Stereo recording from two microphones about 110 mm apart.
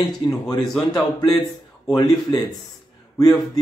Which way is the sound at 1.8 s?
35° left (ahead or behind).